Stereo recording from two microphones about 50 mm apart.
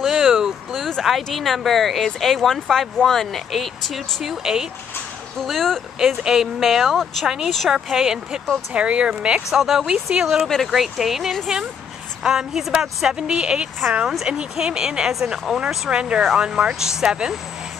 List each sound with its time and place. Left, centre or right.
0.0 s a sound: centre
0.7 s a sound: centre
1.0 s speech: centre
5.4 s speech: centre
5.9 s speech: centre
7.2 s speech: centre
8.7 s speech: right
9.5 s speech: centre
15.9 s speech: right